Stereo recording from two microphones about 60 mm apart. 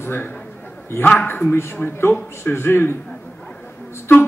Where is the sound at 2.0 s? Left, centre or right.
Left.